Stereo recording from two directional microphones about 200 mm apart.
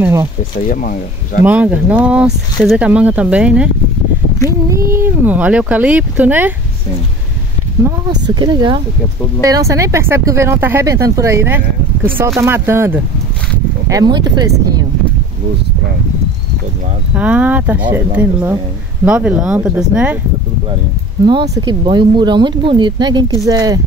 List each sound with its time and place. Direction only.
0.0 s speech: 10° right (ahead or behind)
0.6 s speech: 45° left (ahead or behind)
1.4 s speech: 5° right (ahead or behind)
7.8 s speech: 20° right (ahead or behind)
17.1 s speech: 5° right (ahead or behind)
21.3 s speech: 20° right (ahead or behind)